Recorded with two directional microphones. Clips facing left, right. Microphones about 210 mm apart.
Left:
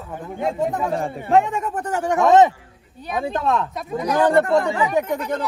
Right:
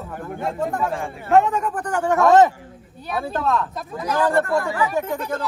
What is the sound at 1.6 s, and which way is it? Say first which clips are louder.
Speech: right 1 dB; 25° left (ahead or behind).